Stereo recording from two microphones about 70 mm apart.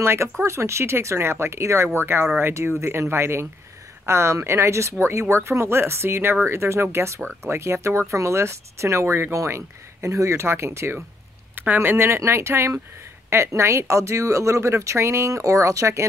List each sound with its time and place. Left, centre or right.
0.0 s speech: right
11.5 s speech: right